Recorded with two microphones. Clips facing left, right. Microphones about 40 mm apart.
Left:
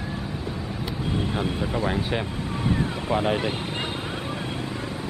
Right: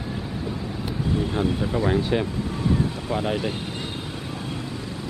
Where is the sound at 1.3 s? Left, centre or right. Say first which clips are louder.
Right 2 dB; centre.